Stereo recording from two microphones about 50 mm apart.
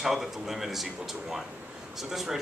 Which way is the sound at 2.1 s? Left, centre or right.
Centre.